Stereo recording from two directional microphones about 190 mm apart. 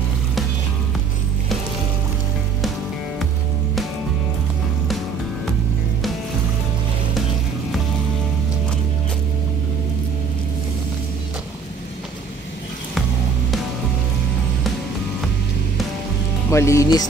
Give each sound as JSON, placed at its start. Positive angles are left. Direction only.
{"t": 16.4, "sound": "speech", "side_deg": 15}